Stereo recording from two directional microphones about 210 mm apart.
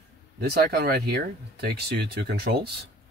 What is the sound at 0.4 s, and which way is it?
Speech, 50° right (ahead or behind).